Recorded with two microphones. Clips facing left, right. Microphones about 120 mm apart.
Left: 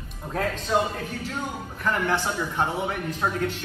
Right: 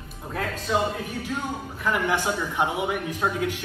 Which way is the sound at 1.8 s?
10° right (ahead or behind).